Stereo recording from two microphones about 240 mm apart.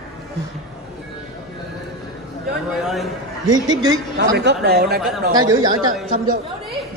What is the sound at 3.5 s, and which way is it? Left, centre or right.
Speech, centre.